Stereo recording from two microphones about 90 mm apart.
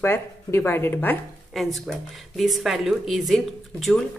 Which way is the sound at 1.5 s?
Centre (ahead or behind).